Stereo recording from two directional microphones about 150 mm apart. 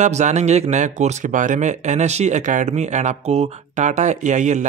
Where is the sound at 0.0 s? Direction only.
50° right (ahead or behind).